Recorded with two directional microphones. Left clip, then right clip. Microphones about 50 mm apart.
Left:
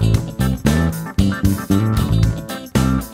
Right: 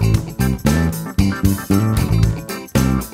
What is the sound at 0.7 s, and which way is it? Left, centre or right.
Music, centre.